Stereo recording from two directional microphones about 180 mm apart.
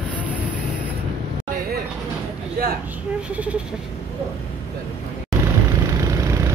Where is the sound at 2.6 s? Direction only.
55° right (ahead or behind).